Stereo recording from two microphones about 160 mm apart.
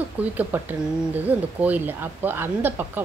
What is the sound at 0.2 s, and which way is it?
A woman's voice, 10° right (ahead or behind).